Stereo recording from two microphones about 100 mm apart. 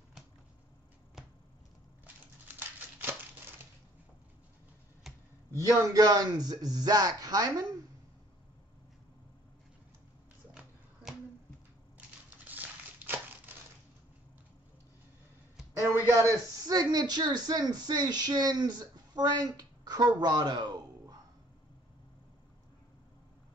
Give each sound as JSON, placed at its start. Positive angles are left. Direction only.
{"t": 5.1, "sound": "computer keyboard", "side_deg": 0}
{"t": 5.5, "sound": "speech", "side_deg": -35}
{"t": 12.4, "sound": "crumpling", "side_deg": -20}
{"t": 15.7, "sound": "a sound", "side_deg": -30}